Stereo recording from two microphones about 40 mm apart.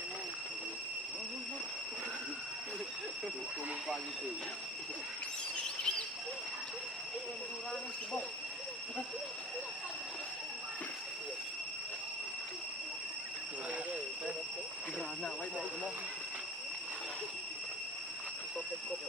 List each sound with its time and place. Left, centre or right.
5.6 s fowl: left